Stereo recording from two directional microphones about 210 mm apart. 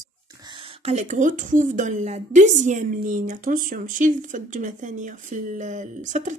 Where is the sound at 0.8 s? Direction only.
35° right (ahead or behind).